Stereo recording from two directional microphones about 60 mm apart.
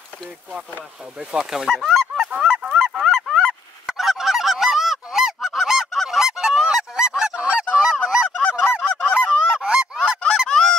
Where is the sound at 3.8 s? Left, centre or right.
Centre.